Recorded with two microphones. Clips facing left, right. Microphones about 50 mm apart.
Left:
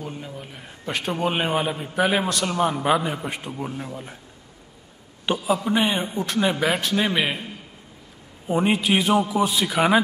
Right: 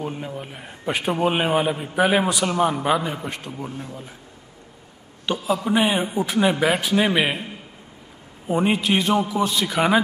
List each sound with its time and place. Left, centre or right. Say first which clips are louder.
0.0 s a man's voice: right 5 dB; right; by 3.3 s centre
3.3 s a man's voice: left 1 dB; centre
5.3 s a man's voice: left 1 dB; left
5.7 s a man's voice: right 2 dB; centre
8.5 s a man's voice: even; centre